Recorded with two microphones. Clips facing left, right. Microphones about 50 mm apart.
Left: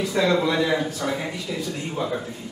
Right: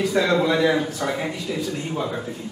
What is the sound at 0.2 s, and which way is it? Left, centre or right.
Speech, centre.